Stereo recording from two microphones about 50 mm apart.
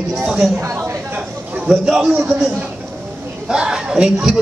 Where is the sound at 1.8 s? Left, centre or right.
Centre.